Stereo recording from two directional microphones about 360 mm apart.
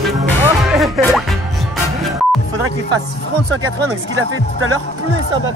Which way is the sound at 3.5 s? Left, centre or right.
Right.